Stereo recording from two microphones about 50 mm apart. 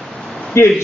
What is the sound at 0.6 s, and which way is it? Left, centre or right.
Speech, left.